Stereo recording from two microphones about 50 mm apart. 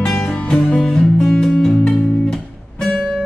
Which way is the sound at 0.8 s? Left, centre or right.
Centre.